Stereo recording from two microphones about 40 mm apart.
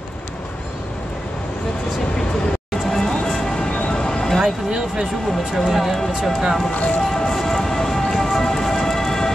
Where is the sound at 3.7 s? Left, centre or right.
Left.